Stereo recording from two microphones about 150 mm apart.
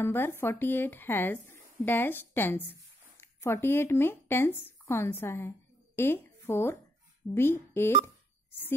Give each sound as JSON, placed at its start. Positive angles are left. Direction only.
{"t": 0.0, "sound": "speech", "side_deg": 15}